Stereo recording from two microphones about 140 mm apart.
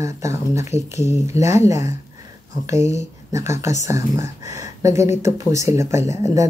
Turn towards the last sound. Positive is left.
turn(degrees=-20)  # may be behind; listen again after turning